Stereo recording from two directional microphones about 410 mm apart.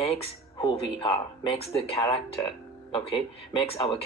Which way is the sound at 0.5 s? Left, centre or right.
Centre.